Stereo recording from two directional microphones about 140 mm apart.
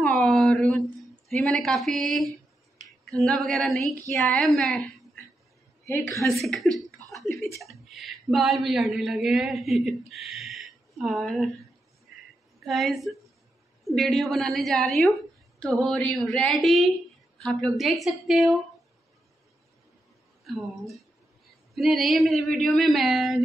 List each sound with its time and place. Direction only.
0.0 s a sound: 5° left (ahead or behind)
3.1 s a man's voice: 5° left (ahead or behind)
5.9 s a woman's voice: 20° left (ahead or behind)
6.3 s a man's voice: centre (ahead or behind)
7.1 s a sound: centre (ahead or behind)
7.5 s speech: centre (ahead or behind)
12.5 s a woman's voice: centre (ahead or behind)
20.4 s a man's voice: centre (ahead or behind)